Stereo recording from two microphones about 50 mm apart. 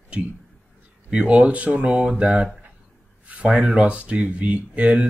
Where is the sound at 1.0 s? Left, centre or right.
Centre.